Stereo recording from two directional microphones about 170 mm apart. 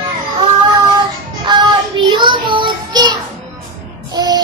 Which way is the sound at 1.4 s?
25° right (ahead or behind).